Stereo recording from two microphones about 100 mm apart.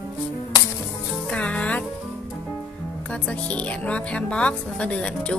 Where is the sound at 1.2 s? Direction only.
10° left (ahead or behind).